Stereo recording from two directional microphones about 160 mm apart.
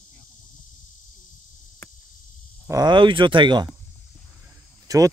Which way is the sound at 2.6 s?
25° right (ahead or behind).